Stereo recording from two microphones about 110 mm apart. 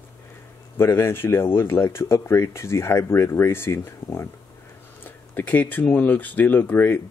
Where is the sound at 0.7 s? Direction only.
20° left (ahead or behind).